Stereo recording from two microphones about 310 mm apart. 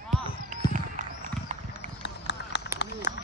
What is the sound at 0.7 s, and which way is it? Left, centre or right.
Clip-clop, right.